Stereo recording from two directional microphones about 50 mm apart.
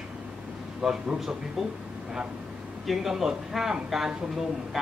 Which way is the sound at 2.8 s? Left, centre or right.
Centre.